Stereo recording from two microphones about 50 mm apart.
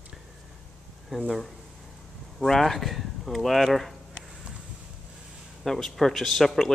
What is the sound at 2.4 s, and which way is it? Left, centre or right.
Speech, centre.